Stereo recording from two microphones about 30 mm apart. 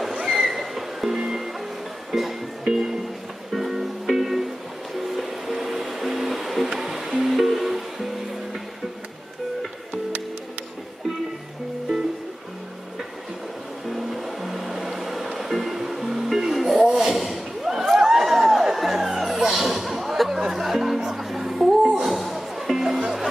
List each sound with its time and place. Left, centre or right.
0.3 s music: centre
2.7 s speech: centre
3.5 s music: centre
13.8 s music: centre
17.1 s a sound: centre
17.7 s music: centre
21.3 s a sound: centre
22.0 s music: centre